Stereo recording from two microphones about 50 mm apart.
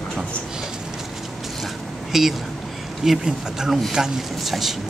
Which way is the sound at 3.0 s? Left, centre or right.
Centre.